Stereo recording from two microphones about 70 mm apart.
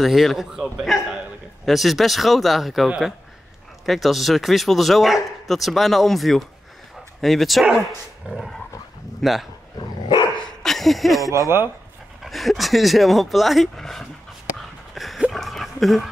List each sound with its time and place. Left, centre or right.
0.0 s a man's voice: centre
8.3 s dog: centre
9.2 s a man's voice: centre
9.8 s dog: left
10.4 s a sound: centre
11.3 s a man's voice: right
12.2 s a man's voice: centre
15.0 s a sound: centre